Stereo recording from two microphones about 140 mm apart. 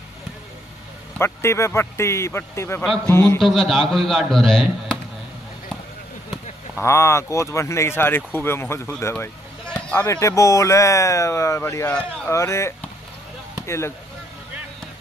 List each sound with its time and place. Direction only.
1.1 s a man's voice: 20° left (ahead or behind)
3.3 s speech: 5° left (ahead or behind)
6.8 s speech: 20° left (ahead or behind)
9.1 s a sound: 10° left (ahead or behind)
10.0 s speech: 20° left (ahead or behind)
12.3 s speech: 20° left (ahead or behind)